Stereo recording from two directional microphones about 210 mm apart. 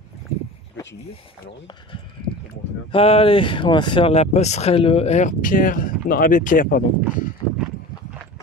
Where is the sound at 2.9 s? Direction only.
25° left (ahead or behind).